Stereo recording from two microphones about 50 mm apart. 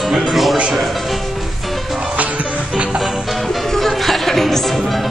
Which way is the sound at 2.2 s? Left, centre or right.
Right.